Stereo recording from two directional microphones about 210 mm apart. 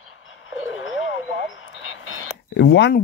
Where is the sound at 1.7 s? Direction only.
65° left (ahead or behind).